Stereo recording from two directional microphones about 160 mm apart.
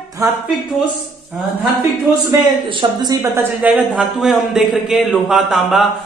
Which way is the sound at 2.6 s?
30° right (ahead or behind).